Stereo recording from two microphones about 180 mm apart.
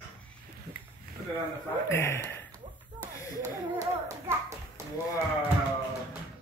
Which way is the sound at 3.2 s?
20° left (ahead or behind).